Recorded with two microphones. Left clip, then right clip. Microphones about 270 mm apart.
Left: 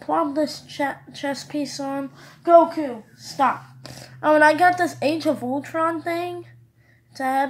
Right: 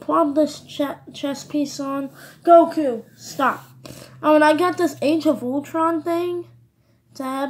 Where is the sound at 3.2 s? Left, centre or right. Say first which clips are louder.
Even; left.